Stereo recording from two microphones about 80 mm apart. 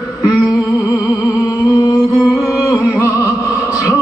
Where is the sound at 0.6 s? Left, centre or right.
Left.